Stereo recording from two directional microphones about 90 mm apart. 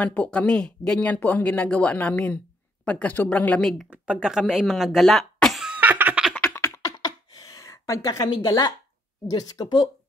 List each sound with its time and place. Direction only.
0.0 s speech: 15° left (ahead or behind)
3.9 s speech: 10° right (ahead or behind)
5.7 s laughter: 20° right (ahead or behind)
6.3 s a sound: 20° left (ahead or behind)
6.8 s a sound: 45° left (ahead or behind)
8.3 s a woman's voice: 60° left (ahead or behind)
9.3 s speech: 45° left (ahead or behind)